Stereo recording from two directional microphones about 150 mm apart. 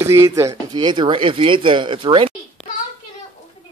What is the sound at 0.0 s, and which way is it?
Speech, 20° right (ahead or behind).